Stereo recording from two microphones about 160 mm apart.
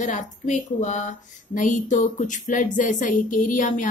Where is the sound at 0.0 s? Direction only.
50° left (ahead or behind).